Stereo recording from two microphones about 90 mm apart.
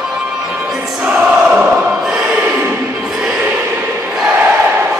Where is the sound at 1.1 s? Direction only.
15° right (ahead or behind).